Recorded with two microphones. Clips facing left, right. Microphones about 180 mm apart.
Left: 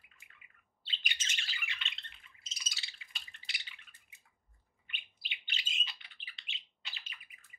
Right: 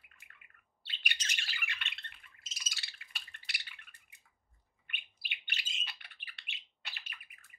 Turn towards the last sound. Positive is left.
turn(degrees=-60)  # may be behind; listen again after turning